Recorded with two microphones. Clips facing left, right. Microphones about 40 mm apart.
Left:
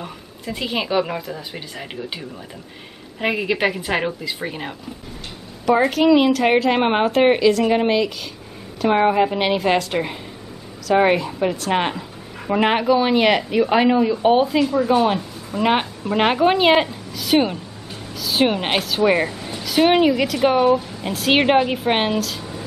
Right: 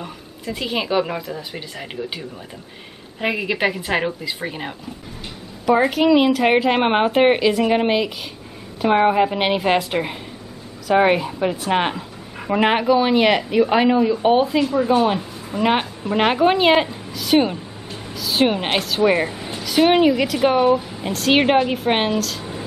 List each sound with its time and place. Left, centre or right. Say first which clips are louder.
0.0 s a woman's voice: right 1 dB; centre
19.3 s a sound: right 1 dB; centre
19.6 s speech: right 1 dB; centre
22.4 s music: right 1 dB; centre